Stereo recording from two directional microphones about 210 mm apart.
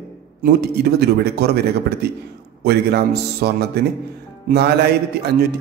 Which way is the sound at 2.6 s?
50° right (ahead or behind).